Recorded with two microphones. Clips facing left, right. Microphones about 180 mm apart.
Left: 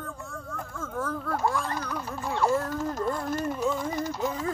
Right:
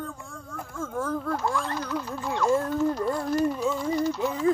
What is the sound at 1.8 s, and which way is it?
Speech, 20° right (ahead or behind).